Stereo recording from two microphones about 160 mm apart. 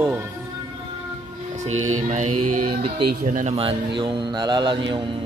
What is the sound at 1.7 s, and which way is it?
Mantra, 45° right (ahead or behind).